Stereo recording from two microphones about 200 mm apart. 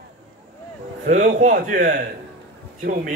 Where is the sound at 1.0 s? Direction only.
35° right (ahead or behind).